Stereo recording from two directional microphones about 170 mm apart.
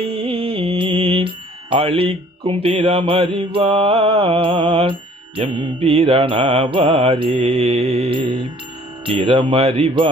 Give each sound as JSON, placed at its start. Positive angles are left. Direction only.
{"t": 0.0, "sound": "music", "side_deg": -35}
{"t": 9.0, "sound": "speech", "side_deg": -30}